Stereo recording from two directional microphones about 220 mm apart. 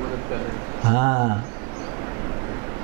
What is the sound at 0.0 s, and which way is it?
A man's voice, 20° right (ahead or behind).